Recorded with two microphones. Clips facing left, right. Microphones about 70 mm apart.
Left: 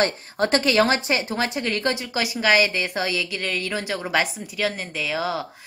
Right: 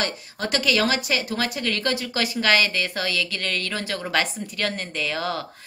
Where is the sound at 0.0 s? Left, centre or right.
Left.